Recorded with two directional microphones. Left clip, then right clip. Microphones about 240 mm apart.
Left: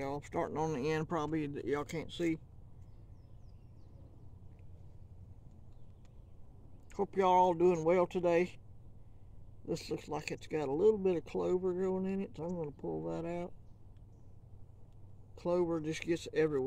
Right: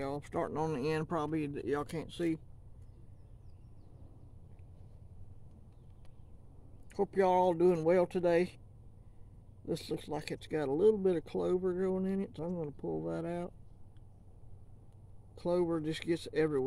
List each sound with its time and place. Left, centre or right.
0.0 s speech: centre
6.9 s speech: right
9.7 s speech: right
15.3 s speech: right